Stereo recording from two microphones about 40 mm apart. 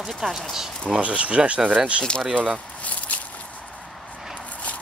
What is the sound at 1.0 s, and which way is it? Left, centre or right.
Speech, right.